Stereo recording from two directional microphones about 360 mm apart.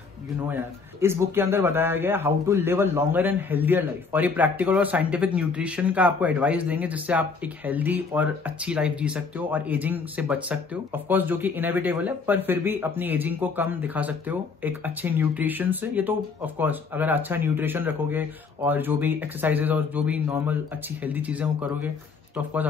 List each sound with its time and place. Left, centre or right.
1.0 s a man's voice: centre